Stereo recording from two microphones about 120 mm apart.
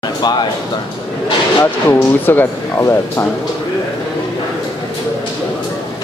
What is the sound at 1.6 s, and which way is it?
Speech, 15° left (ahead or behind).